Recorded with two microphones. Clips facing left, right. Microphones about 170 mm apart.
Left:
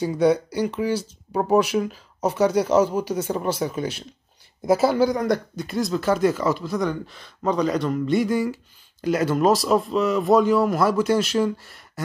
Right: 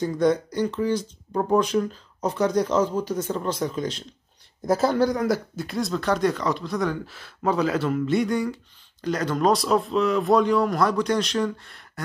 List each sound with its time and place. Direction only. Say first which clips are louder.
0.0 s speech: left 2 dB; 10° left (ahead or behind)